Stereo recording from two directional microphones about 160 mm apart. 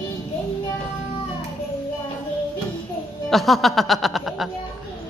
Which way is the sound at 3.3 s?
Centre (ahead or behind).